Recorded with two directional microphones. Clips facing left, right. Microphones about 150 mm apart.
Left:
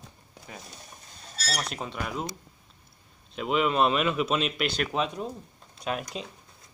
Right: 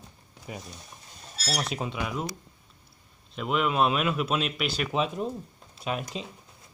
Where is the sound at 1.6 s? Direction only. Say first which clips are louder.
Right 2 dB; 5° right (ahead or behind).